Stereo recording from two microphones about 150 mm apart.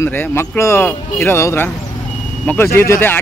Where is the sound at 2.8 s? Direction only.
15° left (ahead or behind).